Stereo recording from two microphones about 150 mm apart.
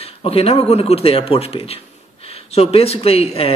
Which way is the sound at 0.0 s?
40° left (ahead or behind).